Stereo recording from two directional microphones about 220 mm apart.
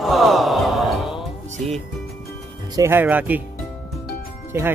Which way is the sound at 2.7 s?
10° right (ahead or behind).